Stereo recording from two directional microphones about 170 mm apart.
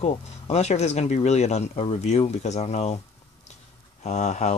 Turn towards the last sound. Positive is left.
turn(degrees=40)  # may be behind; listen again after turning